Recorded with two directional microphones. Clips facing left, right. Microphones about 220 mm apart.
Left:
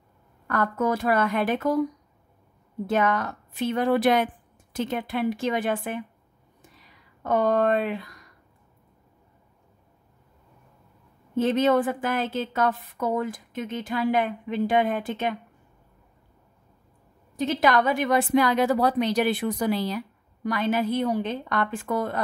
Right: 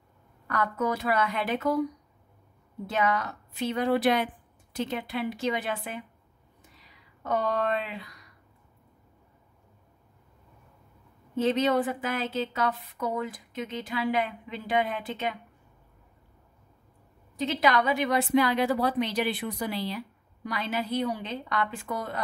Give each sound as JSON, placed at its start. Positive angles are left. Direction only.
{"t": 0.5, "sound": "a woman's voice", "side_deg": 45}
{"t": 2.9, "sound": "a woman's voice", "side_deg": 50}
{"t": 7.2, "sound": "a woman's voice", "side_deg": 45}
{"t": 11.3, "sound": "a woman's voice", "side_deg": 50}
{"t": 17.4, "sound": "a woman's voice", "side_deg": 50}